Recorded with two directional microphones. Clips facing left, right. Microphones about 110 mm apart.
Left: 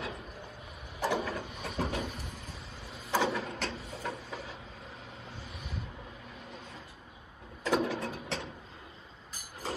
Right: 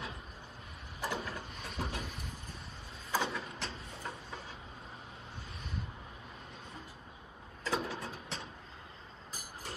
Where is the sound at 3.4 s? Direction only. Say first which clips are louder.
Left 6 dB; 85° left.